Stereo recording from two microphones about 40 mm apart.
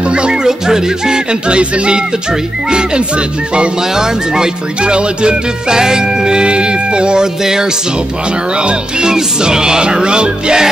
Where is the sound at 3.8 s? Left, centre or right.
Centre.